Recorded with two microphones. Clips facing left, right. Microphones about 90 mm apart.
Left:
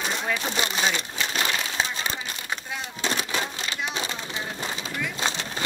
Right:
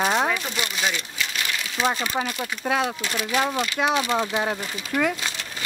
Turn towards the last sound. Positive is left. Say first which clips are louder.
# right 7 dB
turn(degrees=-70)  # may be behind; listen again after turning